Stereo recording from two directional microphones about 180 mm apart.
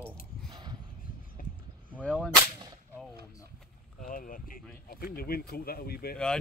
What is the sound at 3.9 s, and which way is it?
Speech, 50° left (ahead or behind).